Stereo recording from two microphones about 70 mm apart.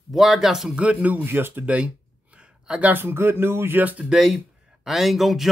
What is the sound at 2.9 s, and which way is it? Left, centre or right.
Speech, right.